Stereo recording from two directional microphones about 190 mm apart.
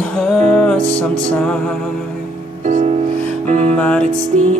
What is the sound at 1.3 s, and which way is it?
Music, 5° left (ahead or behind).